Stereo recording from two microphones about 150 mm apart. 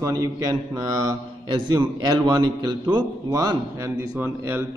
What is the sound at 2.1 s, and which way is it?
A man's voice, 30° right (ahead or behind).